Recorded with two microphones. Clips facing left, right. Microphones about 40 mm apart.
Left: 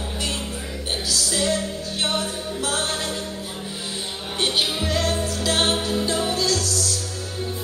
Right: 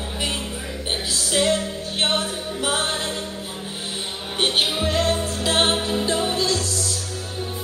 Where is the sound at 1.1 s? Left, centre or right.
Right.